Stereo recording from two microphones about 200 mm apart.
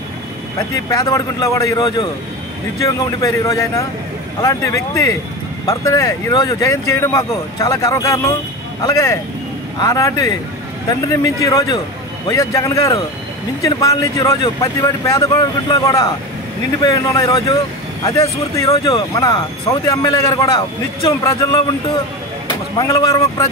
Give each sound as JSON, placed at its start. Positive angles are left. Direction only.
{"t": 0.9, "sound": "speech", "side_deg": 15}
{"t": 16.8, "sound": "speech", "side_deg": 20}
{"t": 22.8, "sound": "speech", "side_deg": 20}